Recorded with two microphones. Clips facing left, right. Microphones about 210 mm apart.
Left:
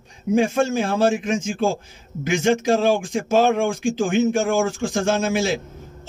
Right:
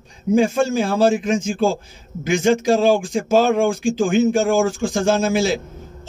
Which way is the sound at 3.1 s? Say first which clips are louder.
Right 2 dB; centre (ahead or behind).